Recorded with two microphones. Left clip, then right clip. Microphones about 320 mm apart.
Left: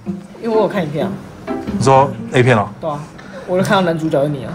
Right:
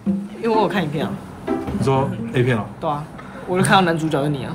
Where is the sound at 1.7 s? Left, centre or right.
Centre.